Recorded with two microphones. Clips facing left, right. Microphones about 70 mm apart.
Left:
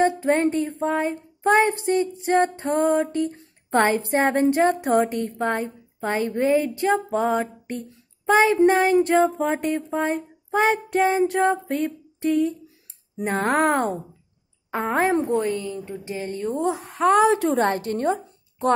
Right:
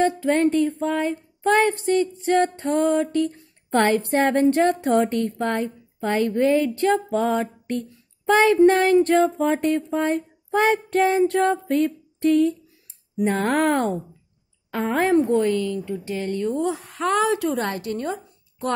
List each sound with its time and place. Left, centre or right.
0.0 s female singing: left
4.5 s a sound: centre
14.7 s female singing: left